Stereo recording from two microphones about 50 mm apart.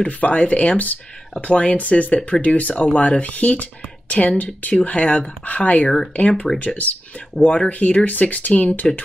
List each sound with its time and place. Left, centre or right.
0.0 s speech: left